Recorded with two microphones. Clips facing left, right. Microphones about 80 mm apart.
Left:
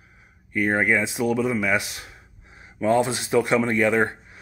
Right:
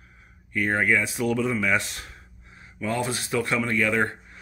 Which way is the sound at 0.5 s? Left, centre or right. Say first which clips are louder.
Left 2 dB; centre.